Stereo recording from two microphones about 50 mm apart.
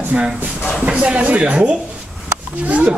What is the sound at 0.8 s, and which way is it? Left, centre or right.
Speech, right.